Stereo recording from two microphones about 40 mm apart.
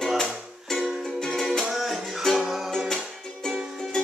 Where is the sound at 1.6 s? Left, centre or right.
Centre.